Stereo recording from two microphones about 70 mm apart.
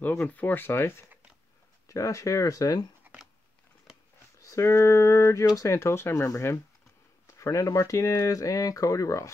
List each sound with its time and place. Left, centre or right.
0.2 s speech: left
1.9 s speech: left
4.4 s speech: left
7.2 s speech: left